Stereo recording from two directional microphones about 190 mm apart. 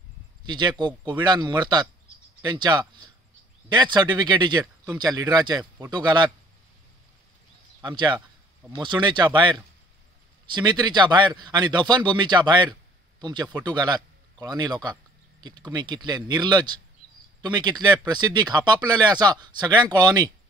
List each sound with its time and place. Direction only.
0.5 s speech: 25° right (ahead or behind)
7.8 s speech: 25° right (ahead or behind)